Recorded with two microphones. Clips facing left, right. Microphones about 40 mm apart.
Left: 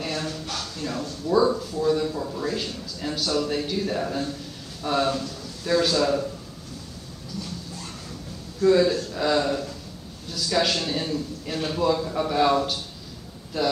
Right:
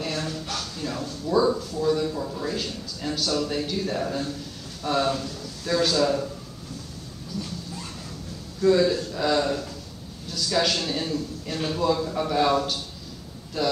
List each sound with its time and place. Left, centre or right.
0.0 s a man's voice: centre
8.5 s a man's voice: centre